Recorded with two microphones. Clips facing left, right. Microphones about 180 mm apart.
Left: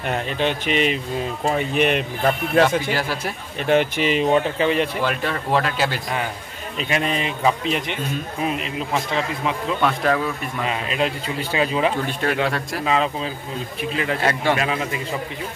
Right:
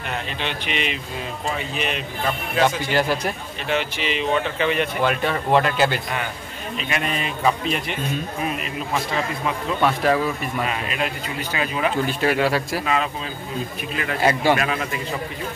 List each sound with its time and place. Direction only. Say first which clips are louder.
0.4 s speech: left 8 dB; 45° left (ahead or behind)
1.5 s a man's voice: left 8 dB; 55° left (ahead or behind)
2.9 s speech: right 3 dB; 5° left (ahead or behind)
3.6 s speech: left 6 dB; 50° left (ahead or behind); by 4.8 s 30° left (ahead or behind)
5.0 s speech: right 2 dB; centre (ahead or behind)
6.8 s a man's voice: left 4 dB; 30° left (ahead or behind)
9.8 s speech: right 2 dB; 5° right (ahead or behind)
10.7 s a man's voice: left 3 dB; 25° left (ahead or behind)
12.1 s speech: right 2 dB; 5° right (ahead or behind)
12.8 s a man's voice: left 2 dB; 25° left (ahead or behind)
14.2 s speech: right 4 dB; 5° right (ahead or behind)
14.6 s a man's voice: left 1 dB; 20° left (ahead or behind)